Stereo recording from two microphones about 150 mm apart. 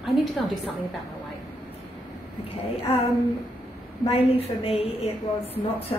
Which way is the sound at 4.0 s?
40° left (ahead or behind).